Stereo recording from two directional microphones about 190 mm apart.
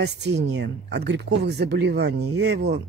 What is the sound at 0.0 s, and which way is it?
Speech, 65° right (ahead or behind).